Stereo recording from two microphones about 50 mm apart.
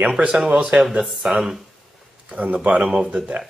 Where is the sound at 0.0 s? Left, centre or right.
Right.